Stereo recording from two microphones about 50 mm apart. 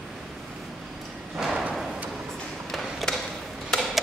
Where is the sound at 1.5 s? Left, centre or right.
Right.